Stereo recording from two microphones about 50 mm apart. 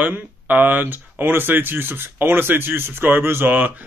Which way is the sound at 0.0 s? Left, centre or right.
Right.